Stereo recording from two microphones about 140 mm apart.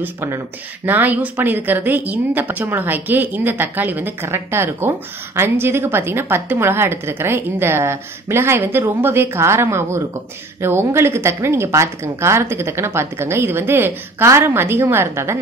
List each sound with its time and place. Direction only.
0.0 s a woman's voice: 15° right (ahead or behind)